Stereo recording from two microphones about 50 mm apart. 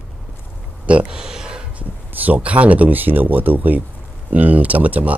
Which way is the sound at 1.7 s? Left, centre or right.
Right.